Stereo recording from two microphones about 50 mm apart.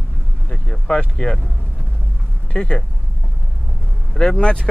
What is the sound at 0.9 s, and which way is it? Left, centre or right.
Speech, left.